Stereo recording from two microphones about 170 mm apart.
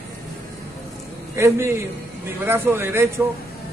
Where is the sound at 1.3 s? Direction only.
15° right (ahead or behind).